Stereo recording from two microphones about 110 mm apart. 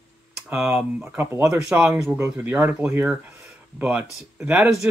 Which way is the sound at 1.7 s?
10° right (ahead or behind).